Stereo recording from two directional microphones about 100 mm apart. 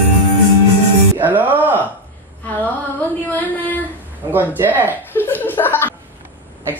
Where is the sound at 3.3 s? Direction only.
15° left (ahead or behind).